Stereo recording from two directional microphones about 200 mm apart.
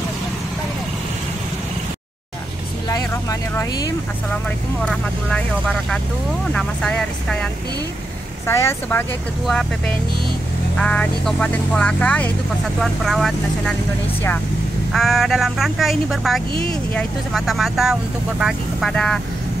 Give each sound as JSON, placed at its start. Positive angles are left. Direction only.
{"t": 2.9, "sound": "vehicle", "side_deg": 15}
{"t": 6.5, "sound": "speech", "side_deg": 5}
{"t": 8.5, "sound": "speech", "side_deg": 10}
{"t": 14.9, "sound": "speech", "side_deg": 0}